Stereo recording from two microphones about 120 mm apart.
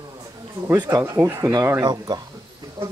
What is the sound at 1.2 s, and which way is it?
Speech, 25° right (ahead or behind).